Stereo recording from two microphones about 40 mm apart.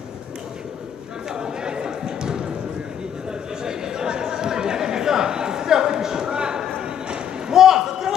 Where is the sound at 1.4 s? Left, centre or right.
Centre.